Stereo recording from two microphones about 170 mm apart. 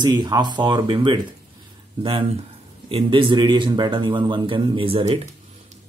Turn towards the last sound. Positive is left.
turn(degrees=-35)  # may be behind; listen again after turning